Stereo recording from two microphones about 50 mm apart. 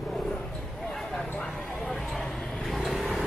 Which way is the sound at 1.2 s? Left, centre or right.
Left.